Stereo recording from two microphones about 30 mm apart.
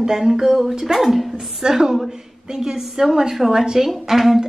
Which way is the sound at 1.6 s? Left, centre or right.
Centre.